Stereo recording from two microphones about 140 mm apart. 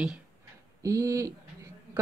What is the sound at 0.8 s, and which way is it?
Speech, 25° right (ahead or behind).